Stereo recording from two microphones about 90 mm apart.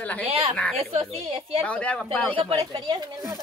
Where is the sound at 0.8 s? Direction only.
85° right.